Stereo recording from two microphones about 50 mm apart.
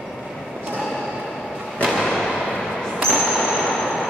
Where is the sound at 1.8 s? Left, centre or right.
Centre.